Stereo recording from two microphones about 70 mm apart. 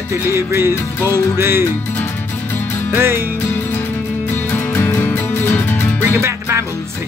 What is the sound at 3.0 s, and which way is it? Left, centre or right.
Music, right.